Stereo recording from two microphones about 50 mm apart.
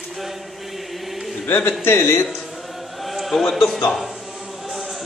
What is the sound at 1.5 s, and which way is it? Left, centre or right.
Speech, left.